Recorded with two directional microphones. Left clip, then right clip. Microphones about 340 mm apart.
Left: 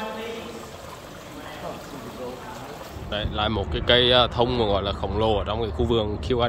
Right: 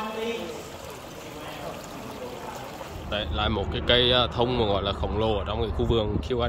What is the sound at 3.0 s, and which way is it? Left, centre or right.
Speech, centre.